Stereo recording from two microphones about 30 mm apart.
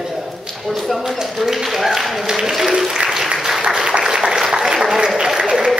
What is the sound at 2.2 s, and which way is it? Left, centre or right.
Speech, centre.